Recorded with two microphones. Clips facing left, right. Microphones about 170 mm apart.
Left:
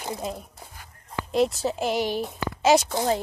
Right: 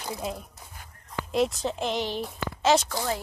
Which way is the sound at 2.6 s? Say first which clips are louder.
Left 3 dB; 10° left (ahead or behind).